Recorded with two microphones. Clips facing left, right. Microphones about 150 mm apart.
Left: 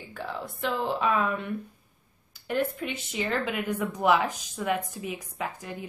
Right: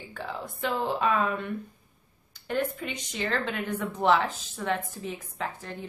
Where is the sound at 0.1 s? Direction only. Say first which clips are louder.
Left 1 dB; centre (ahead or behind).